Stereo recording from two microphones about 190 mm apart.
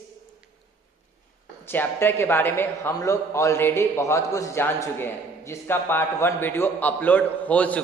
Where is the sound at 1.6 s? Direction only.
10° left (ahead or behind).